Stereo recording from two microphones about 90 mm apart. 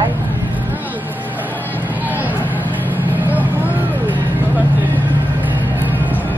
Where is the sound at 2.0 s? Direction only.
20° right (ahead or behind).